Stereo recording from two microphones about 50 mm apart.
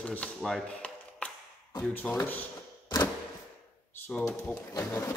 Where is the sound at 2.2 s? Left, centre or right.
Left.